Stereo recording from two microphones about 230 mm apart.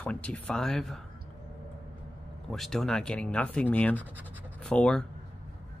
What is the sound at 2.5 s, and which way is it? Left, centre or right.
Speech, centre.